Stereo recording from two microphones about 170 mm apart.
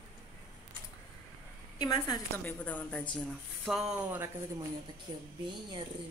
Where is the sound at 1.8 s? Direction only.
25° left (ahead or behind).